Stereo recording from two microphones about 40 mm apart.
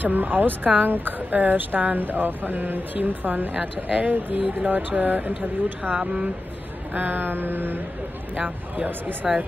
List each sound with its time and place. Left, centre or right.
0.0 s speech: right
5.9 s speech: right
6.9 s a sound: right
8.4 s speech: right